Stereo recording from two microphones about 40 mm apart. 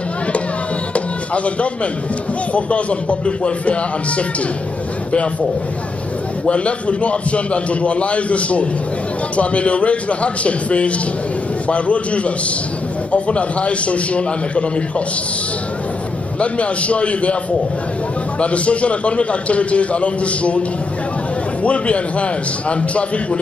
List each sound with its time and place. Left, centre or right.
0.9 s music: left
2.5 s a man's voice: left
6.4 s a man's voice: left
16.3 s a man's voice: left
18.4 s a man's voice: left
21.6 s a man's voice: left